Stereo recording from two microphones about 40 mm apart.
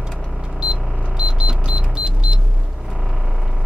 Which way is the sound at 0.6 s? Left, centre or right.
Right.